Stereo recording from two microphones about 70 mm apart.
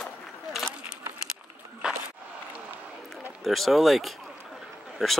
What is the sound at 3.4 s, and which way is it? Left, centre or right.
Speech, centre.